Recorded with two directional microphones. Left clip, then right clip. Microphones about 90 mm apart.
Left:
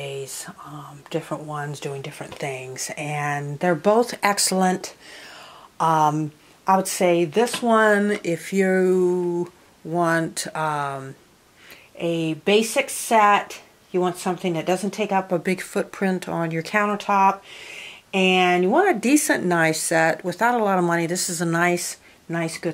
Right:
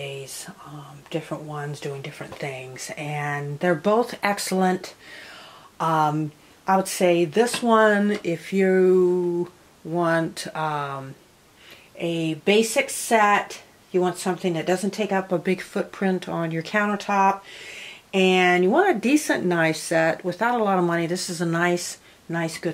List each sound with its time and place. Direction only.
0.0 s whispering: 40° left (ahead or behind)
1.1 s a woman's voice: 35° left (ahead or behind)
7.1 s speech: 15° left (ahead or behind)
18.9 s speech: 30° left (ahead or behind)